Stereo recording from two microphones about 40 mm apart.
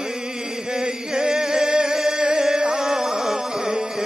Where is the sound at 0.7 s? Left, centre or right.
Centre.